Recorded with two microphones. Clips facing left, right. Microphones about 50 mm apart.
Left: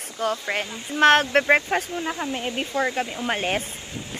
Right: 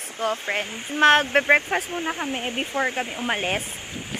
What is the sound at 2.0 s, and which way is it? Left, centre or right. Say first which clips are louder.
Speech: even; right.